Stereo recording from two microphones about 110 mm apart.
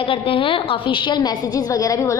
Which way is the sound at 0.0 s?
55° left (ahead or behind).